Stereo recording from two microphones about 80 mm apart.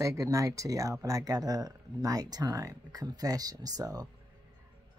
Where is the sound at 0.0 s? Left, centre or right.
Right.